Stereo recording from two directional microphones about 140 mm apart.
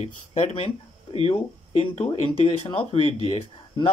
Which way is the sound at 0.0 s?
50° left (ahead or behind).